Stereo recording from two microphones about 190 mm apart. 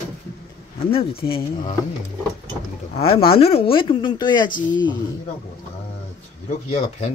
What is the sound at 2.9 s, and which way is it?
Speech, 30° left (ahead or behind).